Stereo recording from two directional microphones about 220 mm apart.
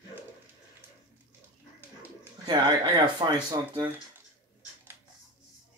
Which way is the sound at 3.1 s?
20° right (ahead or behind).